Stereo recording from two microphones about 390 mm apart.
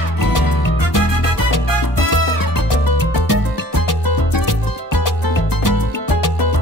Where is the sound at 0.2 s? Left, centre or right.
Left.